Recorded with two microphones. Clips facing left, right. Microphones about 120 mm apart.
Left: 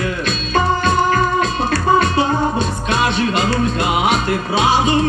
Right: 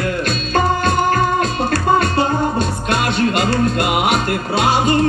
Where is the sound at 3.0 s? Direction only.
50° right (ahead or behind).